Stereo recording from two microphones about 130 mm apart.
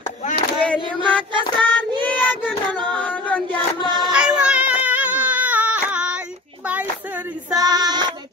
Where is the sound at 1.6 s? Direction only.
35° right (ahead or behind).